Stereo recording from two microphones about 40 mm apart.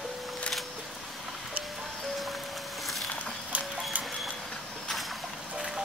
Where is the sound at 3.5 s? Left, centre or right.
Right.